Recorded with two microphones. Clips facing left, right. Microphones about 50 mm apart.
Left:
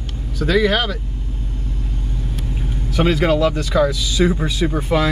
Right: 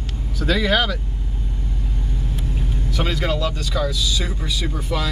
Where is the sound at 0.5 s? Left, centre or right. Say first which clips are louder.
Left 3 dB; centre.